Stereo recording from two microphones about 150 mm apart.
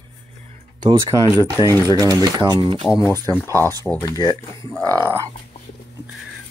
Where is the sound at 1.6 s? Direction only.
25° left (ahead or behind).